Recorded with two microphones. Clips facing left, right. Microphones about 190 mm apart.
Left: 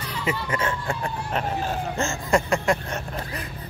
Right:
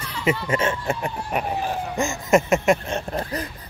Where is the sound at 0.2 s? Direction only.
25° right (ahead or behind).